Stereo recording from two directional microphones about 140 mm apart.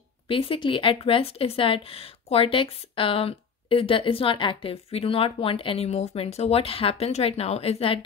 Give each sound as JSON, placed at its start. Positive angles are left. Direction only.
{"t": 0.3, "sound": "speech", "side_deg": 40}